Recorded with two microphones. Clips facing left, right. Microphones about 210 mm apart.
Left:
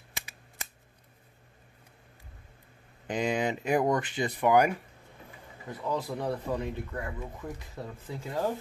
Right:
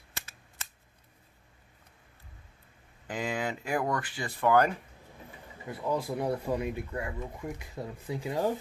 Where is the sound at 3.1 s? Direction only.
20° left (ahead or behind).